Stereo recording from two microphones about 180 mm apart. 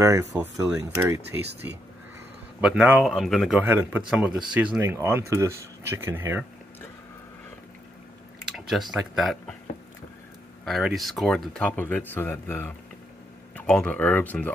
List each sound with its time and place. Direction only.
0.0 s speech: 20° right (ahead or behind)
8.5 s speech: centre (ahead or behind)
10.6 s speech: centre (ahead or behind)